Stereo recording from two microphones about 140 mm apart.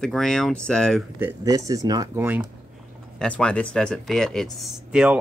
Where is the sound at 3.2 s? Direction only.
5° left (ahead or behind).